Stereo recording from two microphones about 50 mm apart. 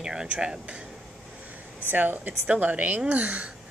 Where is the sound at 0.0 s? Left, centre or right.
Centre.